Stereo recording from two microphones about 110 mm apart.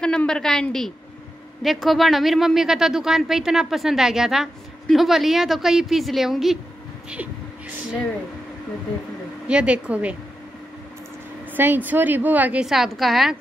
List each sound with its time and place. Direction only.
0.0 s a woman's voice: 5° left (ahead or behind)
9.5 s a woman's voice: 10° right (ahead or behind)
11.5 s a woman's voice: 15° right (ahead or behind)
12.6 s speech: centre (ahead or behind)